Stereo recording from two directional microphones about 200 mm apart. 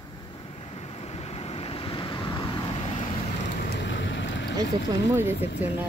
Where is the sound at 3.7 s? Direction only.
60° left (ahead or behind).